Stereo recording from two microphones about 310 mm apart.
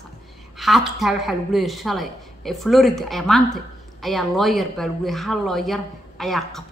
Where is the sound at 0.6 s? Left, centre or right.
Centre.